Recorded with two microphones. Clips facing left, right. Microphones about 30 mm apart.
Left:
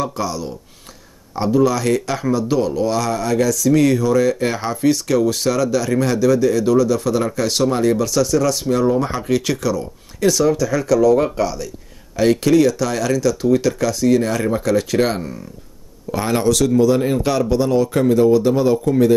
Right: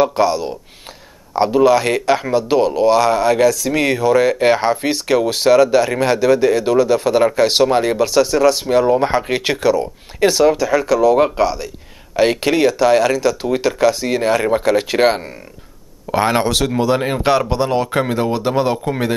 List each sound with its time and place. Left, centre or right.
0.0 s speech: right